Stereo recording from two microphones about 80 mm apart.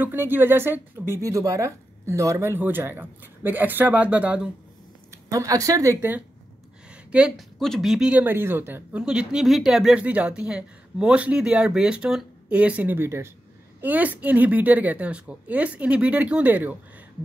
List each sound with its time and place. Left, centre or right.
0.0 s speech: right
5.1 s speech: right
5.9 s speech: right
7.1 s speech: centre
7.3 s speech: centre
8.1 s speech: right
8.9 s speech: centre
9.9 s speech: centre; by 13.3 s right
13.7 s speech: right